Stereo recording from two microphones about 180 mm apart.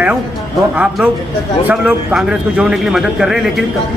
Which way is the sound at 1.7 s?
5° right (ahead or behind).